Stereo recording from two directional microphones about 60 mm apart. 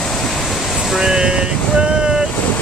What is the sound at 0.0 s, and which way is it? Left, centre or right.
Waves, centre.